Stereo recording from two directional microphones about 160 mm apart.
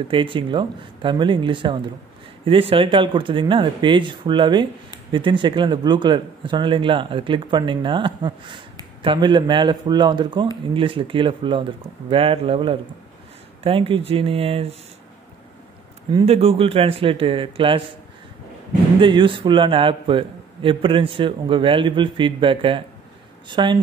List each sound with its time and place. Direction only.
0.1 s a man's voice: 30° right (ahead or behind)
16.1 s a man's voice: 35° right (ahead or behind)
18.9 s a man's voice: 30° right (ahead or behind)